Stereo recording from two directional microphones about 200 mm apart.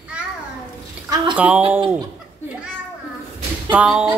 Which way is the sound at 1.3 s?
5° right (ahead or behind).